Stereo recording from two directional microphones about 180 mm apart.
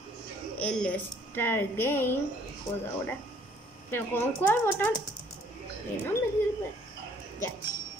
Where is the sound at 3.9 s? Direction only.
10° left (ahead or behind).